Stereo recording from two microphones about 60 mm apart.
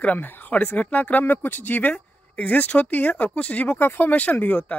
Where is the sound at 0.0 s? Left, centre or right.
Left.